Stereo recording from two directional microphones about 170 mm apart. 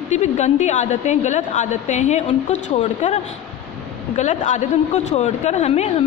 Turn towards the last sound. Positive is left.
turn(degrees=40)  # may be behind; listen again after turning